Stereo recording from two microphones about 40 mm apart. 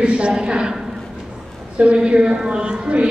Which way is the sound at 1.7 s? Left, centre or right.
Right.